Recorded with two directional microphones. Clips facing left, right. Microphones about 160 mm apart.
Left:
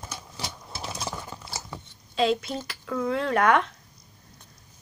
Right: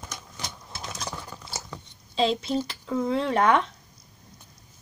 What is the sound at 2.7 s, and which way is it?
Speech, 25° right (ahead or behind).